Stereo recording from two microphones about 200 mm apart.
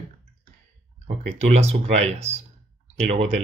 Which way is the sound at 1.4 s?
30° right (ahead or behind).